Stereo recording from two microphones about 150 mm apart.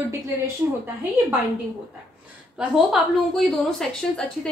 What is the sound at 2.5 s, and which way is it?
A woman's voice, centre (ahead or behind).